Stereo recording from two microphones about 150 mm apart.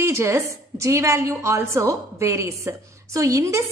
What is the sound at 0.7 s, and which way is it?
A woman's voice, 20° right (ahead or behind).